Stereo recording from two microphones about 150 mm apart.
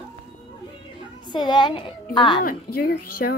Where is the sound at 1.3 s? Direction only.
30° left (ahead or behind).